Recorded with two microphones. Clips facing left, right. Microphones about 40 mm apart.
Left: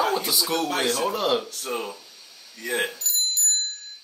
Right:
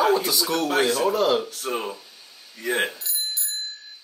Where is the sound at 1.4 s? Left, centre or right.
Centre.